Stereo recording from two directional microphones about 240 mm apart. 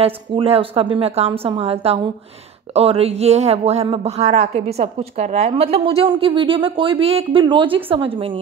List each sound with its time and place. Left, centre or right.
0.0 s speech: right